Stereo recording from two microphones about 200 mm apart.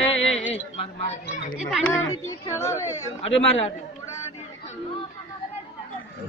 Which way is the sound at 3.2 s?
30° left (ahead or behind).